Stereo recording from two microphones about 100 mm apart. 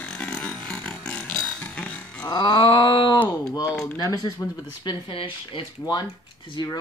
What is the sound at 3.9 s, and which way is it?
Speech, 35° left (ahead or behind).